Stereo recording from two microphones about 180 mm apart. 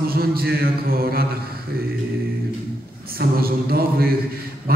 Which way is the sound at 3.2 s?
55° right (ahead or behind).